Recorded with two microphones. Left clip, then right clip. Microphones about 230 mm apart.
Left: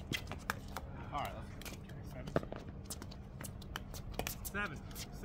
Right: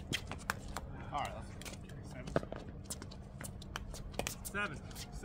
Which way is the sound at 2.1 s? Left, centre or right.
Centre.